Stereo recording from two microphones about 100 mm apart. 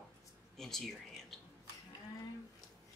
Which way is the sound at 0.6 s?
5° left (ahead or behind).